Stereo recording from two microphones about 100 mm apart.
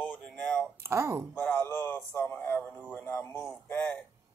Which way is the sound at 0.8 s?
25° right (ahead or behind).